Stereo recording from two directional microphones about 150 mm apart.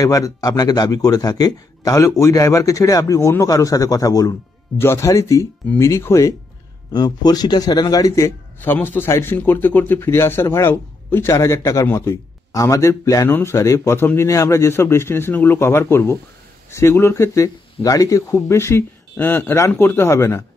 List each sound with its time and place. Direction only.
0.0 s a man's voice: 20° left (ahead or behind)
6.9 s a man's voice: 30° left (ahead or behind)
8.5 s a man's voice: 15° left (ahead or behind)